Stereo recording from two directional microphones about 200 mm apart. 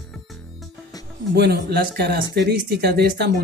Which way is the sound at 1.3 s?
55° right (ahead or behind).